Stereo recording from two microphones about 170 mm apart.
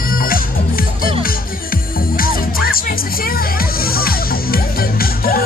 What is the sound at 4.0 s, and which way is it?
Music, 60° left (ahead or behind).